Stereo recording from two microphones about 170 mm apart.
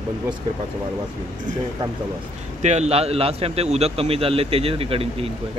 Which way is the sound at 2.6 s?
40° right (ahead or behind).